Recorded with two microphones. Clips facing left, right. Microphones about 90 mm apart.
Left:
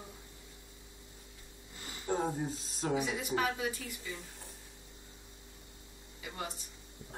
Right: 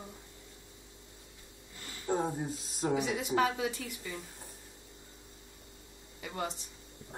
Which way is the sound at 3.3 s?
70° right (ahead or behind).